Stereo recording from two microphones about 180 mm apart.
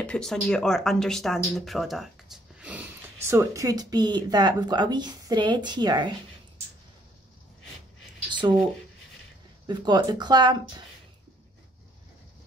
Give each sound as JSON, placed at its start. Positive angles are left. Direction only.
{"t": 0.0, "sound": "speech", "side_deg": 5}
{"t": 8.3, "sound": "speech", "side_deg": -25}
{"t": 9.7, "sound": "speech", "side_deg": -25}